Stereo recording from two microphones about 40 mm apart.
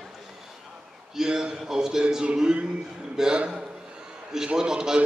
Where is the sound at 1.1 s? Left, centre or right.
Centre.